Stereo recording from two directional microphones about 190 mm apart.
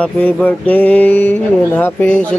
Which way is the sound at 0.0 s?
5° left (ahead or behind).